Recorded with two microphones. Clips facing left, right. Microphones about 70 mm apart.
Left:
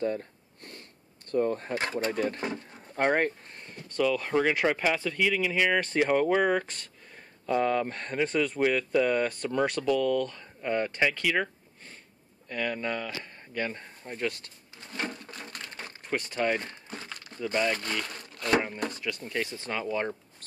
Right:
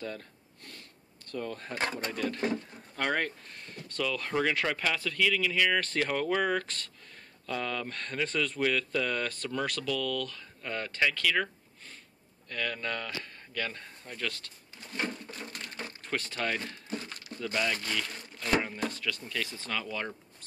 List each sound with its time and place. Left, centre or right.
0.0 s sniff: left
1.3 s speech: left
1.7 s speech: centre
2.0 s speech: left
4.0 s speech: centre
16.0 s speech: centre
18.0 s a sound: left
18.9 s speech: centre